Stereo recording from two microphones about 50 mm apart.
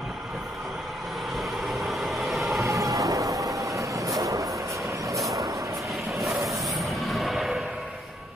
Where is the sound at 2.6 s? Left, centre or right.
Right.